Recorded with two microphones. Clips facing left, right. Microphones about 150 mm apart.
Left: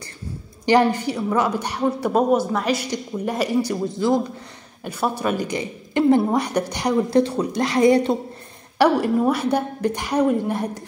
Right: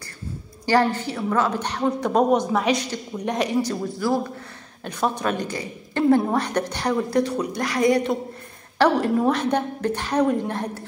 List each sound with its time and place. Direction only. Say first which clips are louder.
0.7 s a woman's voice: left 3 dB; 15° left (ahead or behind)
3.9 s a woman's voice: left 4 dB; 20° left (ahead or behind)
4.8 s a woman's voice: left 1 dB; 10° left (ahead or behind)
7.1 s a woman's voice: left 3 dB; 25° left (ahead or behind)
8.7 s a woman's voice: left 2 dB; 10° left (ahead or behind)